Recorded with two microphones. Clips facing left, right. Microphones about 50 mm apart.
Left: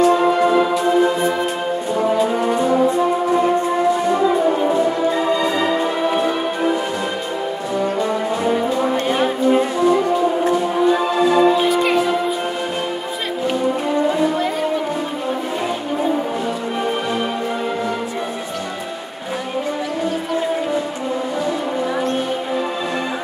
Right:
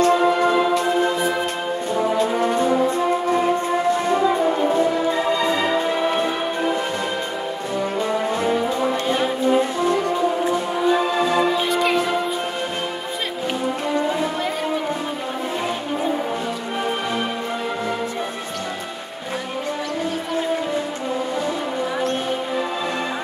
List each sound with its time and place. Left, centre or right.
0.0 s music: centre
2.4 s brass instrument: centre
4.1 s french horn: centre
11.1 s music: centre